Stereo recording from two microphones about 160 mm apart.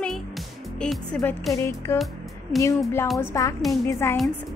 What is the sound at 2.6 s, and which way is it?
Speech, 20° left (ahead or behind).